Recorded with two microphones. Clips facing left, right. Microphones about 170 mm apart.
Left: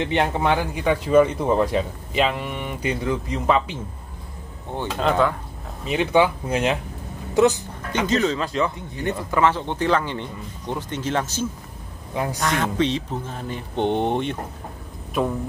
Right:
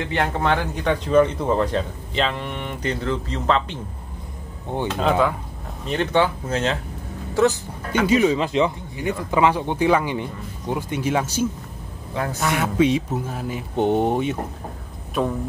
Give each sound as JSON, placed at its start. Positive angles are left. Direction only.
{"t": 0.0, "sound": "a man's voice", "side_deg": 20}
{"t": 4.9, "sound": "speech", "side_deg": -5}
{"t": 5.9, "sound": "a man's voice", "side_deg": 10}
{"t": 8.1, "sound": "speech", "side_deg": -10}